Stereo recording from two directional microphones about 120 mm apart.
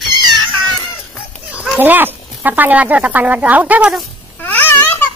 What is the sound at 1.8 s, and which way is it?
Speech, 15° right (ahead or behind).